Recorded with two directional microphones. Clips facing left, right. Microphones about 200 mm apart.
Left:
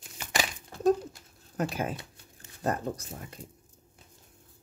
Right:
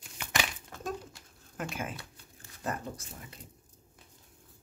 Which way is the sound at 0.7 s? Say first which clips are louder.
Left 13 dB; 40° left (ahead or behind).